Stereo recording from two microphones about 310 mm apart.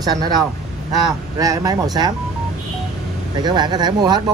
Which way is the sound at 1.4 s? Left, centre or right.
Centre.